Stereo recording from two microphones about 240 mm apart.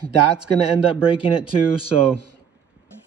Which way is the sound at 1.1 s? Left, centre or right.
Left.